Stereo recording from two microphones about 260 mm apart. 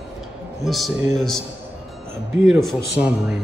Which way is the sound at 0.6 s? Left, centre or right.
Centre.